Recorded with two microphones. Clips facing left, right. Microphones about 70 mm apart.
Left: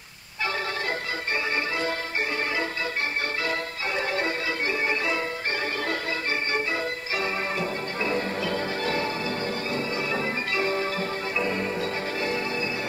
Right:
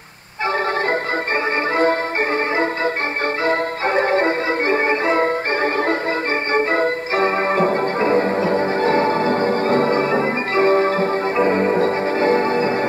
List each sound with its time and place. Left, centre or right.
2.5 s music: right
6.5 s organ: right